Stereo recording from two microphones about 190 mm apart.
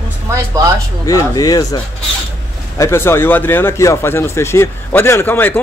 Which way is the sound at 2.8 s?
15° left (ahead or behind).